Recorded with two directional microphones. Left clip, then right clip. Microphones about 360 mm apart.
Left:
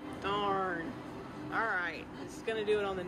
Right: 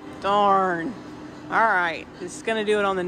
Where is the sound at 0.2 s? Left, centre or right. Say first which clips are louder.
Right 14 dB; centre.